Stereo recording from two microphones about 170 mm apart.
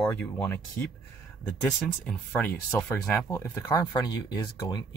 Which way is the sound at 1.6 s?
10° left (ahead or behind).